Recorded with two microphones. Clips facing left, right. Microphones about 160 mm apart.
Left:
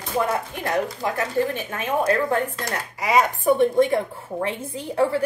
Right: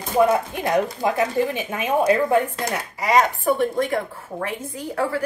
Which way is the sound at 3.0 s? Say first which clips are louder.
Right 1 dB; 5° left (ahead or behind).